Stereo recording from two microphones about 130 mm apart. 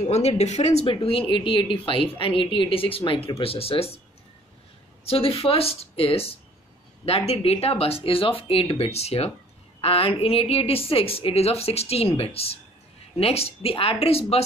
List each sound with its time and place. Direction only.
0.1 s speech: 55° left (ahead or behind)
5.0 s speech: 45° left (ahead or behind)